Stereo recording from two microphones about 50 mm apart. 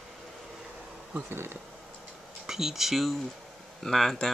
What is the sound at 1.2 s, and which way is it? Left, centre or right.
Speech, right.